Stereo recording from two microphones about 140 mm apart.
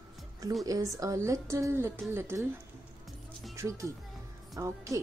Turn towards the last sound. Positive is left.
turn(degrees=-25)  # may be behind; listen again after turning